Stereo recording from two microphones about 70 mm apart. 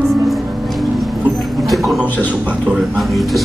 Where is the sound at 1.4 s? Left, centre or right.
Centre.